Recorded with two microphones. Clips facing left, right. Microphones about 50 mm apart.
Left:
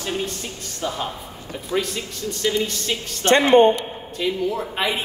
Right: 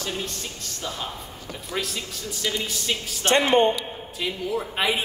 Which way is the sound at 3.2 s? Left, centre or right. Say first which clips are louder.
Left 5 dB; left.